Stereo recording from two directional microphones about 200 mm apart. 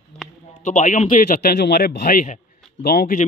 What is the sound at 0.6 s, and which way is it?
Speech, 35° left (ahead or behind).